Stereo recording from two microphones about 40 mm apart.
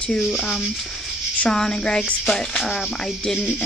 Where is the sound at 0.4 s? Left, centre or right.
Centre.